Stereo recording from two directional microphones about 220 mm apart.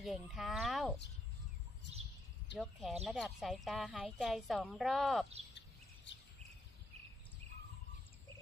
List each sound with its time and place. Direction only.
0.0 s a woman's voice: centre (ahead or behind)
2.5 s a woman's voice: centre (ahead or behind)
6.1 s a sound: 55° left (ahead or behind)